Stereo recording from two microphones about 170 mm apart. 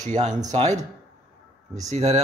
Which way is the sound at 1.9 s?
40° right (ahead or behind).